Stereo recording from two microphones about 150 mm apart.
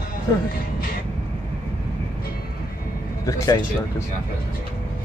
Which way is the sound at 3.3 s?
20° left (ahead or behind).